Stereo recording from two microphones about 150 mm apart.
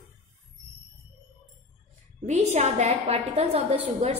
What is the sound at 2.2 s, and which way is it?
A woman's voice, 50° right (ahead or behind).